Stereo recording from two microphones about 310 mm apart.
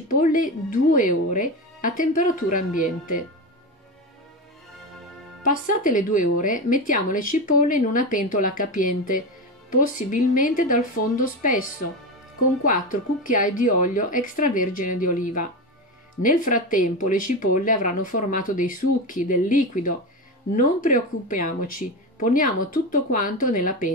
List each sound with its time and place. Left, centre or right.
0.1 s speech: left
5.9 s speech: left
12.6 s speech: left